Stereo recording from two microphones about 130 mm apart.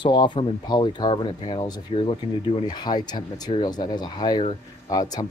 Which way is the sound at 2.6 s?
30° left (ahead or behind).